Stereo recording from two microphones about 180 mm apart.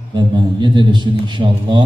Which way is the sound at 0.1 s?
25° right (ahead or behind).